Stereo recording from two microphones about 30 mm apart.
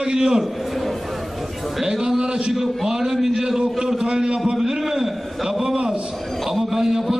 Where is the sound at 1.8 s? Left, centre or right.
Centre.